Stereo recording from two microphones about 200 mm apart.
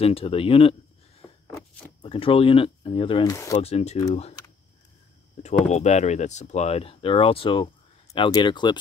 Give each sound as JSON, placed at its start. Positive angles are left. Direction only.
{"t": 0.0, "sound": "speech", "side_deg": 30}
{"t": 1.2, "sound": "a sound", "side_deg": -5}
{"t": 2.0, "sound": "speech", "side_deg": 25}
{"t": 5.4, "sound": "speech", "side_deg": 35}